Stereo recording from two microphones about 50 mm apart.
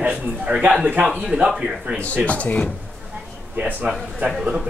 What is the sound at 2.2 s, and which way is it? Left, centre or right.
Speech, left.